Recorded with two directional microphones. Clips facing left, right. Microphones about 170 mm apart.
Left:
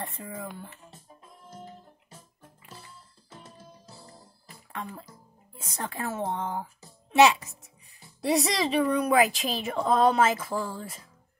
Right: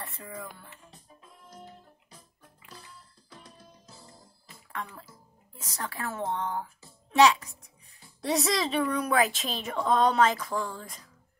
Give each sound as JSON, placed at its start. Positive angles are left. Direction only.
{"t": 5.8, "sound": "a woman's voice", "side_deg": 20}
{"t": 8.0, "sound": "speech", "side_deg": 0}